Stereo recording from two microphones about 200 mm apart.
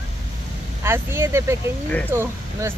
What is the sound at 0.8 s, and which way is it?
Speech, 10° right (ahead or behind).